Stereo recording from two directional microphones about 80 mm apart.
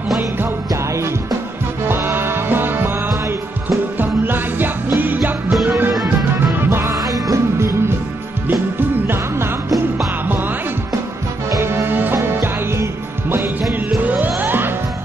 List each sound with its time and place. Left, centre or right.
0.7 s music: right
5.5 s music: centre
6.6 s music: right
8.5 s music: right
11.6 s music: right